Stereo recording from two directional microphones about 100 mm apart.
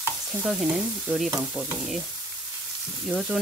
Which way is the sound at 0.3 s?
5° right (ahead or behind).